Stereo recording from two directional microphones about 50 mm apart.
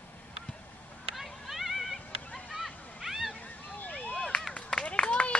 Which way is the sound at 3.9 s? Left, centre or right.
Left.